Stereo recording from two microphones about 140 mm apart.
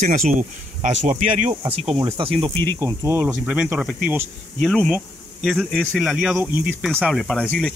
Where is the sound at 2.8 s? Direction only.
20° right (ahead or behind).